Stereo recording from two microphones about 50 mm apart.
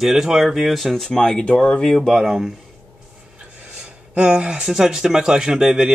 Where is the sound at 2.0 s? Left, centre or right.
Centre.